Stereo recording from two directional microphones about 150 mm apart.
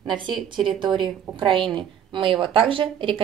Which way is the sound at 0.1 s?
30° right (ahead or behind).